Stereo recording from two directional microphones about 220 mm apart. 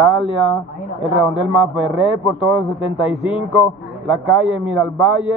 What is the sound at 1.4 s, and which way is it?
A man's voice, 5° right (ahead or behind).